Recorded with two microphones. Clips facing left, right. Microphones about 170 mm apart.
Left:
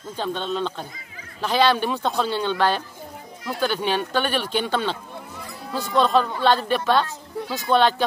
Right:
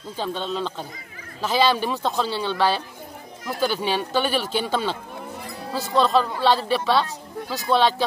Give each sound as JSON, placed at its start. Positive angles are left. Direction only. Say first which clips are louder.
{"t": 0.2, "sound": "speech", "louder": "left 1 dB", "side_deg": -5}
{"t": 5.9, "sound": "speech", "louder": "even", "side_deg": 0}